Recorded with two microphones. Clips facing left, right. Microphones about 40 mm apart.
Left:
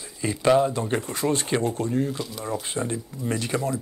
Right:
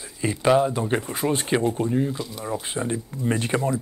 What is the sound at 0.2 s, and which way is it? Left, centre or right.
Speech, centre.